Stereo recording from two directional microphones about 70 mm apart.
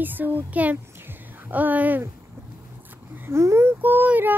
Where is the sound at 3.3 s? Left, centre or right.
Right.